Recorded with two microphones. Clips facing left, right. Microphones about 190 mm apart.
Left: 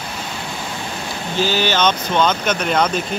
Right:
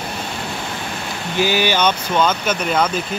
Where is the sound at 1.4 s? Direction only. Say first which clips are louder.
Right 1 dB; 15° right (ahead or behind).